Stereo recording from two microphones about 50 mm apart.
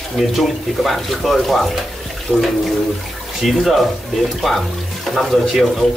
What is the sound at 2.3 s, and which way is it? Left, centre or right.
Speech, left.